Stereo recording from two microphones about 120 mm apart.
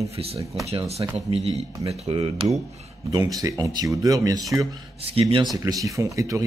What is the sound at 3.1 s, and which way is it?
Speech, 30° right (ahead or behind).